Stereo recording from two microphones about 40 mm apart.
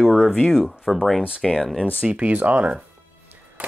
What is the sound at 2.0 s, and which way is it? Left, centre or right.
Speech, right.